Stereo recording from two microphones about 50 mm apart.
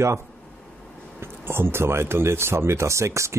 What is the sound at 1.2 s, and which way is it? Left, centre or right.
Speech, right.